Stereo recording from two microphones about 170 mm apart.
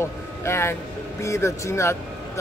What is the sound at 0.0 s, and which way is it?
Speech, 15° left (ahead or behind).